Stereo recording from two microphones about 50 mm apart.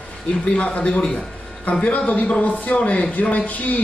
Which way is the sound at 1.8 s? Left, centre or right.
Left.